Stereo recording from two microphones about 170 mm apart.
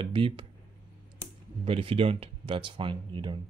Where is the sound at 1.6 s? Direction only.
35° right (ahead or behind).